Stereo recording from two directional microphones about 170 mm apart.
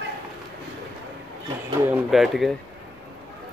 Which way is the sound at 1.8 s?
5° right (ahead or behind).